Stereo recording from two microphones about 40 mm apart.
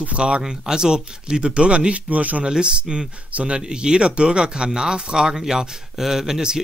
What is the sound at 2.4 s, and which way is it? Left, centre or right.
Speech, right.